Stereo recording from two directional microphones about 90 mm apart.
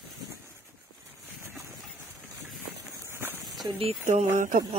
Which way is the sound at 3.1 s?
25° right (ahead or behind).